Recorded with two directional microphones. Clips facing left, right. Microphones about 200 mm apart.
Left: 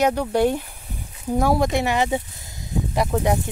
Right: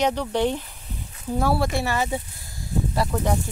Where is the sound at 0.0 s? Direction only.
10° left (ahead or behind).